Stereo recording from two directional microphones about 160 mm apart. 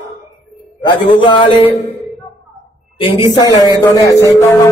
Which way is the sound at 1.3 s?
30° left (ahead or behind).